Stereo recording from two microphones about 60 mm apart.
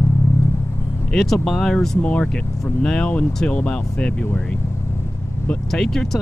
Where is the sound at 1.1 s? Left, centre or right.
Centre.